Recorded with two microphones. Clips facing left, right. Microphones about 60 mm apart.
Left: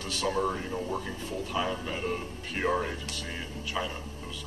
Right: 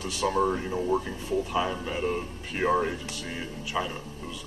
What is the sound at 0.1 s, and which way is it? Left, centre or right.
Speech, centre.